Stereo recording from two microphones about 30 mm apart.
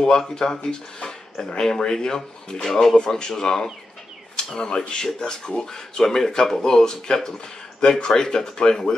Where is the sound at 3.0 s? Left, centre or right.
Left.